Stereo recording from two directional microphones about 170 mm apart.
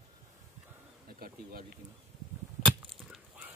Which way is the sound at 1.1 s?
60° right (ahead or behind).